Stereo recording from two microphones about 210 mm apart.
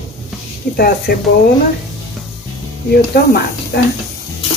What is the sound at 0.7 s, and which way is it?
Speech, 45° left (ahead or behind).